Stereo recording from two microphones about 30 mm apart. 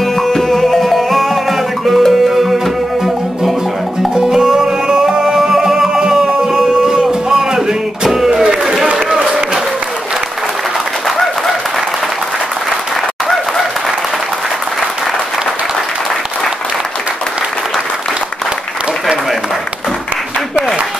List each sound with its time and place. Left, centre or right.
0.0 s music: centre
4.1 s music: right
5.2 s music: centre
6.3 s music: right
8.1 s a sound: centre
11.1 s a sound: centre